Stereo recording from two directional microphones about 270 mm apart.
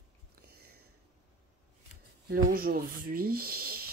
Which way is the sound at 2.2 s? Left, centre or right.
Right.